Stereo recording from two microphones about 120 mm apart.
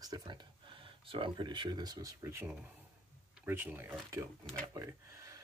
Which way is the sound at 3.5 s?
15° right (ahead or behind).